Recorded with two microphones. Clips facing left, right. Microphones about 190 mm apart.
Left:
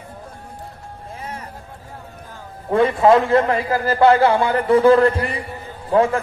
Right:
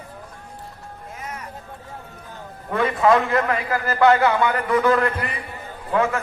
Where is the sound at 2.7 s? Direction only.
30° left (ahead or behind).